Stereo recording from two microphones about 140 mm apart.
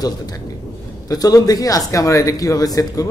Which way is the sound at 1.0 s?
25° left (ahead or behind).